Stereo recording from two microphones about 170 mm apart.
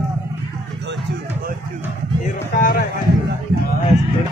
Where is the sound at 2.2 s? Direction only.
50° left (ahead or behind).